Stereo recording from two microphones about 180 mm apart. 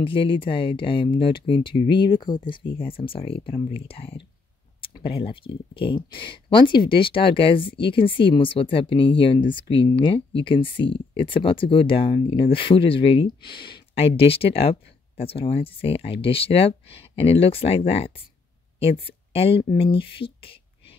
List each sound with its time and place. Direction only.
0.0 s speech: 30° left (ahead or behind)